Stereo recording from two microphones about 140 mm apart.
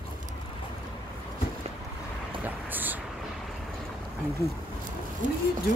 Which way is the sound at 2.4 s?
15° right (ahead or behind).